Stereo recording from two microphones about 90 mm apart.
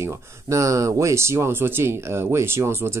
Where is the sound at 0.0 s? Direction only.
35° right (ahead or behind).